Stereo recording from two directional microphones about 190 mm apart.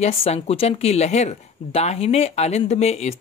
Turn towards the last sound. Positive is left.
turn(degrees=35)  # may be behind; listen again after turning